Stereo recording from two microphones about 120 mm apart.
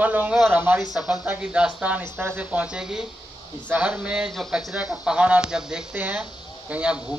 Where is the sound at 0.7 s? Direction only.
Centre (ahead or behind).